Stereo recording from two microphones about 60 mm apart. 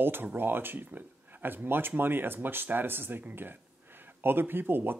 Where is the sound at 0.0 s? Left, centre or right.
Right.